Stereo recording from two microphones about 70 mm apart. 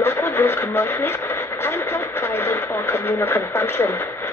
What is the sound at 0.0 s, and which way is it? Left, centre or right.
Radio, left.